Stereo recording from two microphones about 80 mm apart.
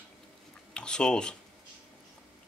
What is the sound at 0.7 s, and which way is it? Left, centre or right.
Speech, centre.